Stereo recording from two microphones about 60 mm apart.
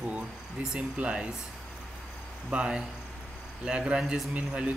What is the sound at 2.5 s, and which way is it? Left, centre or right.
Speech, centre.